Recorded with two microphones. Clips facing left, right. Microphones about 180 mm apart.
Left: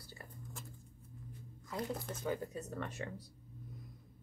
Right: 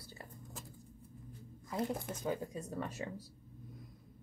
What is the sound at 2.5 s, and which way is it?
Speech, 10° right (ahead or behind).